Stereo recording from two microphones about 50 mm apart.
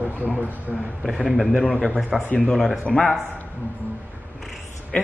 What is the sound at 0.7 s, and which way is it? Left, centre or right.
Speech, right.